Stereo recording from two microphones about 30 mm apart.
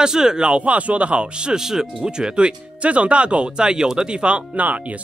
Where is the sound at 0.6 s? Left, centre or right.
Right.